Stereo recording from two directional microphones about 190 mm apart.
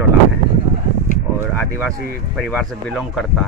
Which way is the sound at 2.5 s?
5° left (ahead or behind).